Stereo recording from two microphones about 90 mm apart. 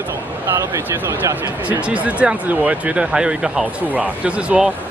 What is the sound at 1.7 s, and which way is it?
Speech, 15° right (ahead or behind).